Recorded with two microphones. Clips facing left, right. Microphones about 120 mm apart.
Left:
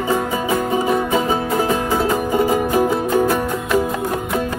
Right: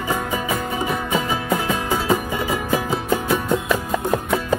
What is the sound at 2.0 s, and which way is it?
Music, 50° left (ahead or behind).